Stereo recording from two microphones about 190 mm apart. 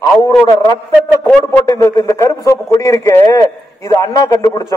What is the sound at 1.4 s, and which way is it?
A man's voice, 15° left (ahead or behind).